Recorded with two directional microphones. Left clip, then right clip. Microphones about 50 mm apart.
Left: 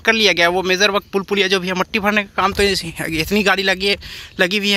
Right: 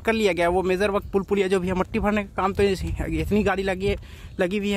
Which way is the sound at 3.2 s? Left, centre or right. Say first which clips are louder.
Left 6 dB; centre.